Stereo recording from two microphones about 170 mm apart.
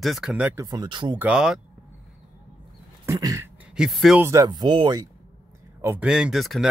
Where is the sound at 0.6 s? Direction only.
25° right (ahead or behind).